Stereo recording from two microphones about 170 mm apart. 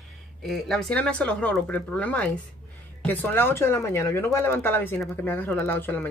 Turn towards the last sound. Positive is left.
turn(degrees=10)  # may be behind; listen again after turning